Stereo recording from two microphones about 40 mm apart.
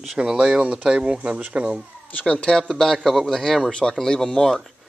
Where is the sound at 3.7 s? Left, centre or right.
Centre.